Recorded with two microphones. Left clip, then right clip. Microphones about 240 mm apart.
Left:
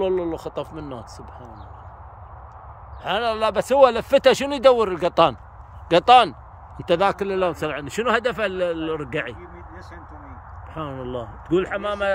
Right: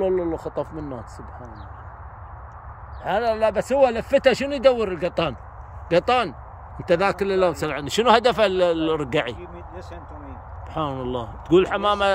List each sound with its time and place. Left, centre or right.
0.2 s speech: left
3.3 s speech: left
3.5 s speech: centre
8.0 s speech: centre